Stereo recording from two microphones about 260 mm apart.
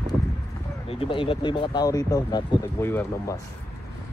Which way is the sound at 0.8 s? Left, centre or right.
Left.